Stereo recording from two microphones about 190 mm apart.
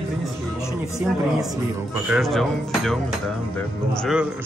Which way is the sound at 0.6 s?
Centre (ahead or behind).